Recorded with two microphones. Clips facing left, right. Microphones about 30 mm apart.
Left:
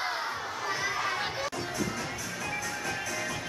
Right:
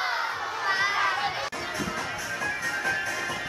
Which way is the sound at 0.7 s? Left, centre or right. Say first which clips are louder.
Right 7 dB; right.